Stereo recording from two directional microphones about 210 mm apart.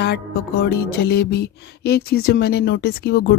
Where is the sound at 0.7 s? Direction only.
50° left (ahead or behind).